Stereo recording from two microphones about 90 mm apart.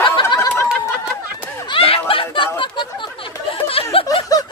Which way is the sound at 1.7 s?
90° left.